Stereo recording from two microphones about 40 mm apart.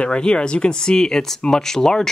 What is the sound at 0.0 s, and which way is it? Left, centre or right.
Speech, left.